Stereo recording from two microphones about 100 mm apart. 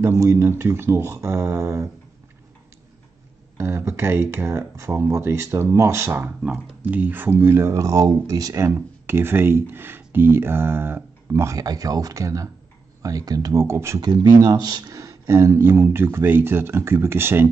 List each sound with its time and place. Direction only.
0.0 s speech: 30° right (ahead or behind)
3.5 s speech: 25° right (ahead or behind)
14.0 s speech: 40° right (ahead or behind); by 17.5 s 25° right (ahead or behind)